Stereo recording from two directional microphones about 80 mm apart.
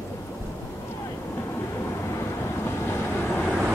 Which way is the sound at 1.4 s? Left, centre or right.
Left.